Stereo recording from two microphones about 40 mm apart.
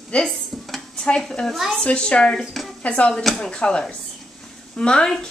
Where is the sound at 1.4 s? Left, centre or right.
Left.